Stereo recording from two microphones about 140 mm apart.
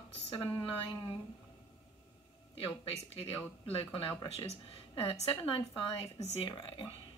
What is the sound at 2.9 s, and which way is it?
A woman's voice, 45° left (ahead or behind).